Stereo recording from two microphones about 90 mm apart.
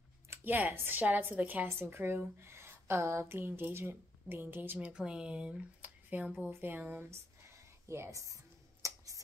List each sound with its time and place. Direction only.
0.3 s a woman's voice: 25° right (ahead or behind)
4.7 s speech: 10° right (ahead or behind); by 8.4 s 35° right (ahead or behind)
8.8 s a sound: 40° right (ahead or behind)